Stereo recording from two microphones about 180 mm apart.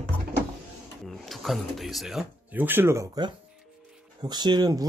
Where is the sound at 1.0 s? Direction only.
Centre (ahead or behind).